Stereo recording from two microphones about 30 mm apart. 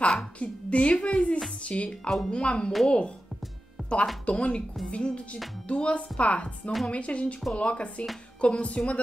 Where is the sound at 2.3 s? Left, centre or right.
Left.